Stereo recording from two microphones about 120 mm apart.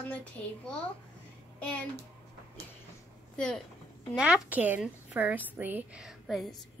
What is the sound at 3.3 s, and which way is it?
Speech, 5° left (ahead or behind).